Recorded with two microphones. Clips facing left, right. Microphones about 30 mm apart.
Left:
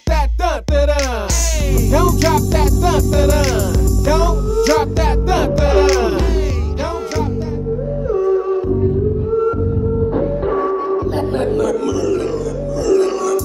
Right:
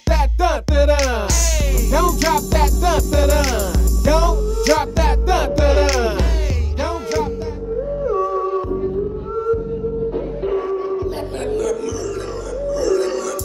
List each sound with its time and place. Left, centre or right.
1.6 s music: centre
8.3 s music: centre
10.1 s music: left
12.1 s music: centre